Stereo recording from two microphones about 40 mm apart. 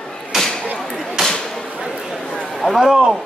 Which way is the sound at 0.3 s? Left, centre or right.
Centre.